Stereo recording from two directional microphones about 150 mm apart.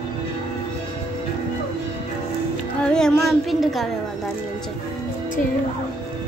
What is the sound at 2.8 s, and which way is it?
Speech, 5° left (ahead or behind).